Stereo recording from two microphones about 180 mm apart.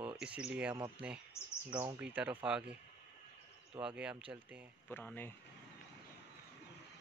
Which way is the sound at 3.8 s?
5° right (ahead or behind).